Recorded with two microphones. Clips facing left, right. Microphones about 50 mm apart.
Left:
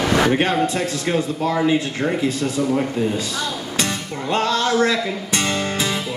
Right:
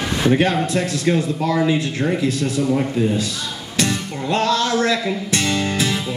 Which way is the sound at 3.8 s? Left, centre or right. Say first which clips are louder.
Right 5 dB; left.